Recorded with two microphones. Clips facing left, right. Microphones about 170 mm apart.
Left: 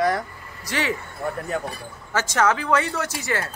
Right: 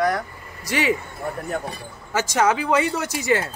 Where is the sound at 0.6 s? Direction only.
15° right (ahead or behind).